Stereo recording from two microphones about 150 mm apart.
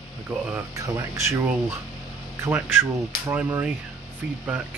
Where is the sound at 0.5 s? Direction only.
20° right (ahead or behind).